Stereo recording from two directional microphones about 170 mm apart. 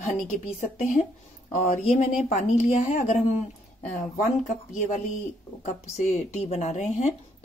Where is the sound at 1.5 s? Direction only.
50° left (ahead or behind).